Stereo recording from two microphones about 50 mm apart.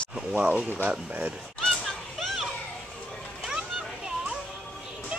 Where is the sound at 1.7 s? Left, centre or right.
Centre.